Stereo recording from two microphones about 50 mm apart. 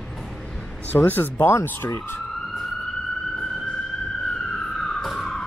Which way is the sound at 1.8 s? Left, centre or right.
Left.